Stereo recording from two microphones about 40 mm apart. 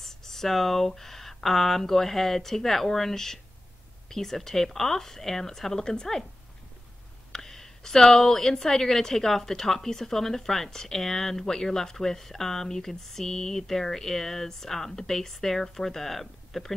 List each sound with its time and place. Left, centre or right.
0.0 s a woman's voice: centre
7.3 s a woman's voice: centre